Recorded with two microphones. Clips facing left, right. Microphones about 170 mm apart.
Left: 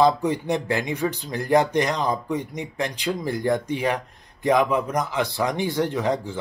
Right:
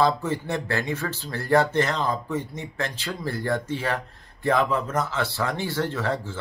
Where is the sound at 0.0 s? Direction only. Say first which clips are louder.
Left 3 dB; 15° left (ahead or behind).